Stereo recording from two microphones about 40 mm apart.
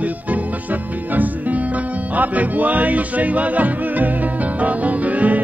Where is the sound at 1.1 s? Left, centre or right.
Right.